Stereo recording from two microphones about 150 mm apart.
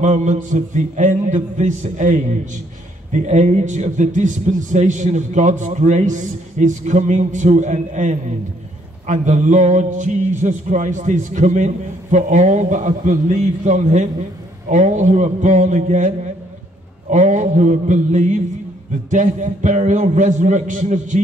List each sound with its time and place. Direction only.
0.0 s a man's voice: 55° right (ahead or behind)
17.1 s a man's voice: 55° right (ahead or behind)